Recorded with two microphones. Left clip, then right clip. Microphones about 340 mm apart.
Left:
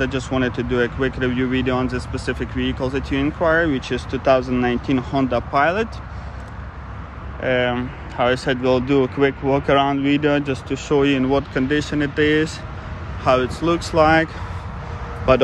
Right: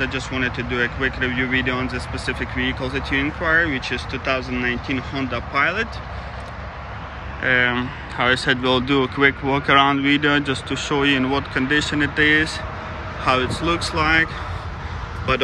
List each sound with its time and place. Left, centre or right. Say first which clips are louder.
0.0 s speech: left 1 dB; centre
1.9 s speech: left 1 dB; left
2.2 s speech: right 2 dB; centre
7.4 s speech: right 1 dB; centre